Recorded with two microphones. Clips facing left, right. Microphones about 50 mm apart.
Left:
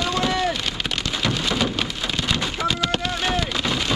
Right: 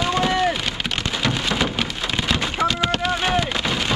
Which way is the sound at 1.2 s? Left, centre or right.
Centre.